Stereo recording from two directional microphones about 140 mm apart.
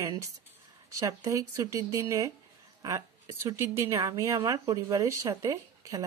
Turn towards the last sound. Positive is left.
turn(degrees=-25)  # may be behind; listen again after turning